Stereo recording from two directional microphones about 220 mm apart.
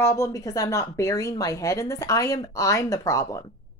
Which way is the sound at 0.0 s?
15° left (ahead or behind).